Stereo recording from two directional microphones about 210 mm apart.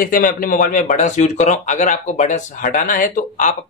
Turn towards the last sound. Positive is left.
turn(degrees=40)  # may be behind; listen again after turning